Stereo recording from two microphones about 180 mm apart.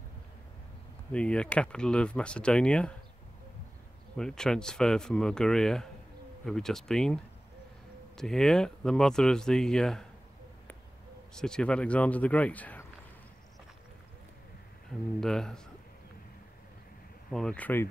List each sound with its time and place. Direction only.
1.1 s speech: 5° left (ahead or behind)
4.2 s speech: 5° left (ahead or behind)
8.2 s speech: 5° left (ahead or behind)
11.3 s a man's voice: 5° left (ahead or behind)
15.1 s speech: 5° left (ahead or behind)
17.3 s a man's voice: 5° left (ahead or behind)